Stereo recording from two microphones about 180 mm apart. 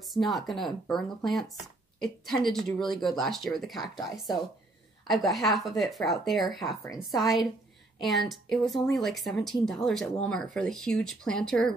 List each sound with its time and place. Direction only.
0.0 s speech: centre (ahead or behind)
6.8 s a woman's voice: 20° left (ahead or behind)
7.2 s speech: centre (ahead or behind)